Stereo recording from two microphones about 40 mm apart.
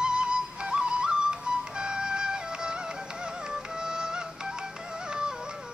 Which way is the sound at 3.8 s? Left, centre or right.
Centre.